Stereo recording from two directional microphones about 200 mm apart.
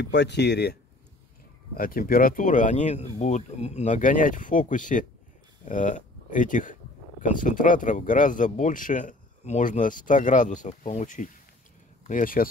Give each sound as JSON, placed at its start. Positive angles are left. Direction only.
{"t": 0.0, "sound": "speech", "side_deg": 60}
{"t": 1.8, "sound": "speech", "side_deg": 45}